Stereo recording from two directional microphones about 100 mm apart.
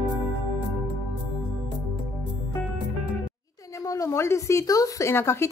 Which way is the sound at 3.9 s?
35° left (ahead or behind).